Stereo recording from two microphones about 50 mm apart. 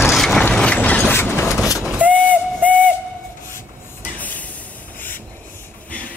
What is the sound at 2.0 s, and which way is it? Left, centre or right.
Steam whistle, left.